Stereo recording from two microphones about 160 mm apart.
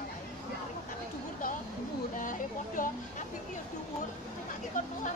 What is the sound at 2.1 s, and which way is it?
Speech, 55° left (ahead or behind).